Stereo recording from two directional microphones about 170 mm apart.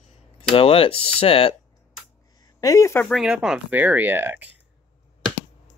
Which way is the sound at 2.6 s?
20° left (ahead or behind).